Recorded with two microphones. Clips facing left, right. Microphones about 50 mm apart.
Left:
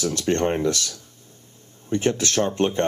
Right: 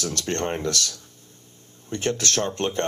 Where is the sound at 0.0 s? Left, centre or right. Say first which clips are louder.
Left 5 dB; left.